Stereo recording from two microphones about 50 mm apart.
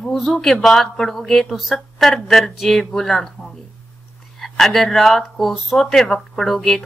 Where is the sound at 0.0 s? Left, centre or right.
Centre.